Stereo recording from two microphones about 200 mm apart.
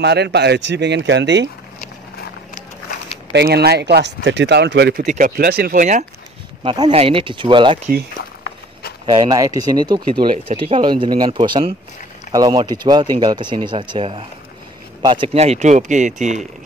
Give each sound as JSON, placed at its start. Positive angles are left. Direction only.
{"t": 0.0, "sound": "speech", "side_deg": -55}
{"t": 3.3, "sound": "speech", "side_deg": -55}
{"t": 5.0, "sound": "speech", "side_deg": -40}
{"t": 5.4, "sound": "speech", "side_deg": -50}
{"t": 6.6, "sound": "speech", "side_deg": -25}
{"t": 9.0, "sound": "speech", "side_deg": -20}